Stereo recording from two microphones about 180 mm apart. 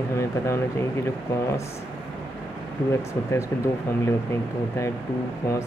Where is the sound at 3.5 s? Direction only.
15° left (ahead or behind).